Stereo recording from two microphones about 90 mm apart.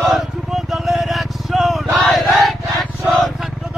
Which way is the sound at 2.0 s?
Centre (ahead or behind).